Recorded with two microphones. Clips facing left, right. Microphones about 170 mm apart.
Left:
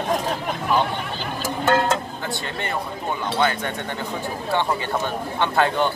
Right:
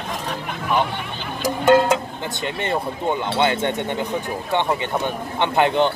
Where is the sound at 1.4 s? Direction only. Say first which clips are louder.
Right 5 dB; 15° right (ahead or behind).